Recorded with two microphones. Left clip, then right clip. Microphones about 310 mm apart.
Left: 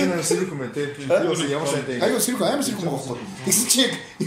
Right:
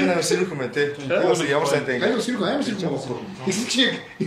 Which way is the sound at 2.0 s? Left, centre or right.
Centre.